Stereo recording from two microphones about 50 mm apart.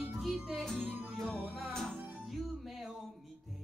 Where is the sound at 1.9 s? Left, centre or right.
Right.